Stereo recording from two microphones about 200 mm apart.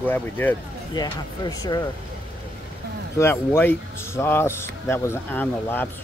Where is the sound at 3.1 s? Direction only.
10° left (ahead or behind).